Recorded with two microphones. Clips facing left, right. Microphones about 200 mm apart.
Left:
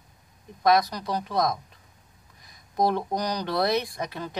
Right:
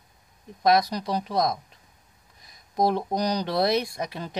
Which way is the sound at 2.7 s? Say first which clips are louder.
Right 1 dB; 15° right (ahead or behind).